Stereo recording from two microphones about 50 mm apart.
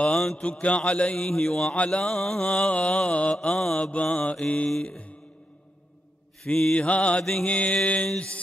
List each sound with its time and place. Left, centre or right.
0.4 s mantra: left
4.6 s mantra: centre
6.4 s mantra: centre